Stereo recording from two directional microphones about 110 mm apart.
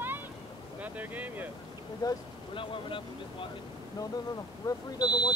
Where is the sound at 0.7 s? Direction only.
15° right (ahead or behind).